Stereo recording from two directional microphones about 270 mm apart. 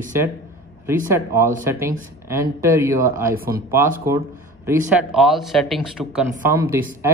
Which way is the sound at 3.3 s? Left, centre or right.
Right.